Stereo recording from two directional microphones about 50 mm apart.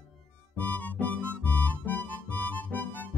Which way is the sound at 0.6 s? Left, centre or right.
Left.